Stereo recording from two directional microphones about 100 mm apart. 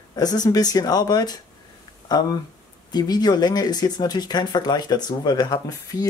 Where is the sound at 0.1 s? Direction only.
40° left (ahead or behind).